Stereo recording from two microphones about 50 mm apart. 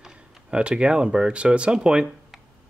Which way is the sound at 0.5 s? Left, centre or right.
Right.